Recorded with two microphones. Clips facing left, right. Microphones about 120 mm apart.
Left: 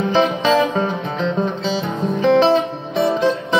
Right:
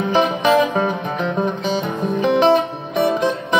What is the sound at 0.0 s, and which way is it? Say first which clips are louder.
Music: even; 15° right (ahead or behind).